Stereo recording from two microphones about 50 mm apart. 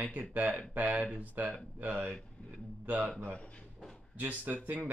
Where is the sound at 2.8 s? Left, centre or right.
Right.